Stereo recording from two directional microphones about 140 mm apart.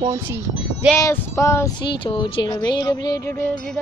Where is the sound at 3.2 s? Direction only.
15° left (ahead or behind).